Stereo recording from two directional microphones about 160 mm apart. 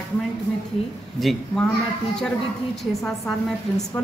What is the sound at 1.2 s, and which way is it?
Speech, centre (ahead or behind).